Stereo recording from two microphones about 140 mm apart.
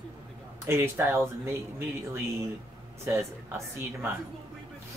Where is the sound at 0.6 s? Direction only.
20° right (ahead or behind).